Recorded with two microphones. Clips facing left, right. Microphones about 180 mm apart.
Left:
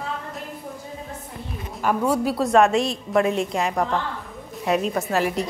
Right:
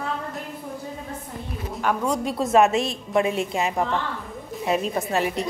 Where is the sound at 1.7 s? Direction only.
5° left (ahead or behind).